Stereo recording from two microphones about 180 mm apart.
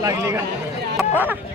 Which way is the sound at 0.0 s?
15° right (ahead or behind).